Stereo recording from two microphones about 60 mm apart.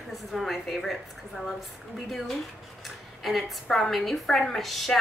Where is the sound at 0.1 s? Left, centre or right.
Centre.